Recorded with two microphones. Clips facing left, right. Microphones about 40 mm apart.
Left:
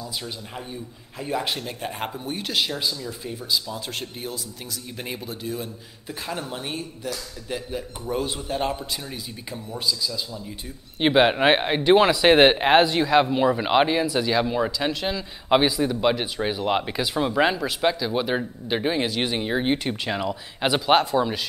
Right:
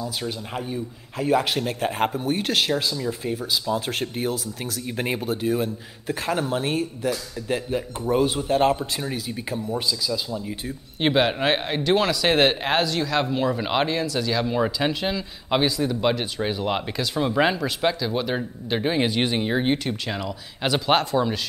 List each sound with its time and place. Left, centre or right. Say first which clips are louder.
1.1 s speech: right 6 dB; centre
4.0 s speech: right 7 dB; right
8.4 s a man's voice: right 6 dB; centre
8.6 s speech: right 6 dB; right
11.1 s speech: left 4 dB; centre
14.5 s speech: right 1 dB; centre
15.5 s speech: left 2 dB; centre
18.9 s speech: right 2 dB; centre
19.8 s speech: left 2 dB; centre
20.8 s speech: left 1 dB; centre